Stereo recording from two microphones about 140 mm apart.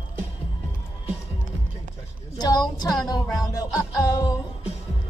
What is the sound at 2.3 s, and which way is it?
Speech, 30° left (ahead or behind).